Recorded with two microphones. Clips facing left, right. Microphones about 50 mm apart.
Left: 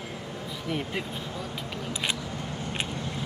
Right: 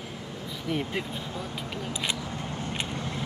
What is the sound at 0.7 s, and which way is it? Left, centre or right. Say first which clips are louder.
Speech: right 2 dB; centre.